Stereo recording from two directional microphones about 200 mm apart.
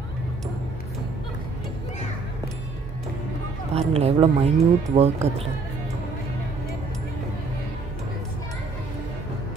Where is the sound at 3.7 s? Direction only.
30° right (ahead or behind).